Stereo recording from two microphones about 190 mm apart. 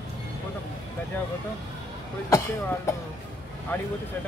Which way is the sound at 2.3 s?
15° left (ahead or behind).